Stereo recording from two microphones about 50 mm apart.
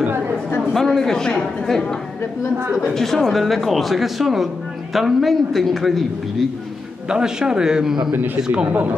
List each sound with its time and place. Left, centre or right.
0.7 s a man's voice: centre
7.1 s a man's voice: centre
8.6 s speech: right